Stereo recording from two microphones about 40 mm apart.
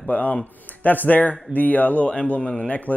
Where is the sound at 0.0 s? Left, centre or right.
Left.